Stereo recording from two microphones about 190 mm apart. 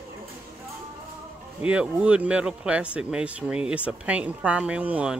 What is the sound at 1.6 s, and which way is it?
Speech, 5° right (ahead or behind).